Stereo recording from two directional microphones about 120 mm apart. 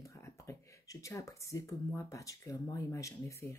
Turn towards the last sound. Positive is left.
turn(degrees=25)  # may be behind; listen again after turning